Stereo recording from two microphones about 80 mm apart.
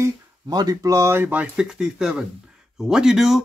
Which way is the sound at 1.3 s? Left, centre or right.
Centre.